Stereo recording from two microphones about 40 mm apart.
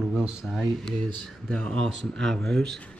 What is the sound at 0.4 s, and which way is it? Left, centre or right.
Speech, left.